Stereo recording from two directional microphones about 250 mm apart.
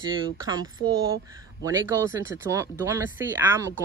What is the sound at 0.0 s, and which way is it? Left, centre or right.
Speech, centre.